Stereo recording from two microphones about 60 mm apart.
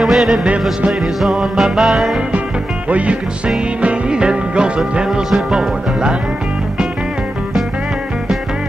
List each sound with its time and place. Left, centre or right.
0.0 s music: centre
2.9 s music: right